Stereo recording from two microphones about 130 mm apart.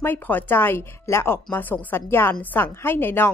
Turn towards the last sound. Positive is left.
turn(degrees=15)  # may be behind; listen again after turning